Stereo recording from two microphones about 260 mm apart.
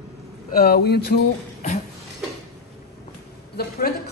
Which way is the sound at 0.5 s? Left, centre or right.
Left.